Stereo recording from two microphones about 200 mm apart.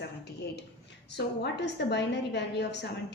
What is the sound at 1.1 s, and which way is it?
A woman's voice, 60° left (ahead or behind).